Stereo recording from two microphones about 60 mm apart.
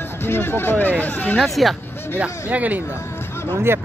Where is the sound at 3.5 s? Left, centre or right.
Right.